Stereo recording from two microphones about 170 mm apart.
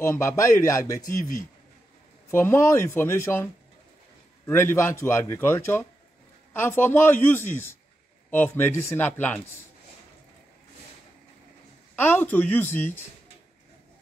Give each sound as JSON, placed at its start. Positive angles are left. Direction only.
{"t": 0.0, "sound": "a man's voice", "side_deg": 15}
{"t": 2.3, "sound": "a man's voice", "side_deg": 15}
{"t": 4.5, "sound": "a man's voice", "side_deg": 15}
{"t": 11.9, "sound": "a man's voice", "side_deg": 10}